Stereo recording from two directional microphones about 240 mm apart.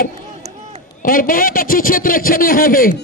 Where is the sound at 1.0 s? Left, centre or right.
Left.